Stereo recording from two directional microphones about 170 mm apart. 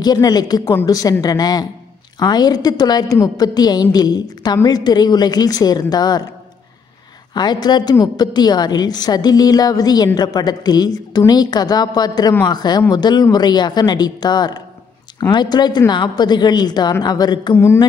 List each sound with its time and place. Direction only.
0.0 s a woman's voice: 25° left (ahead or behind)
7.3 s a woman's voice: 25° left (ahead or behind)